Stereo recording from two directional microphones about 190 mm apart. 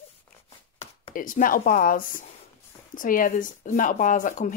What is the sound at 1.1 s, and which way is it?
Speech, 45° left (ahead or behind).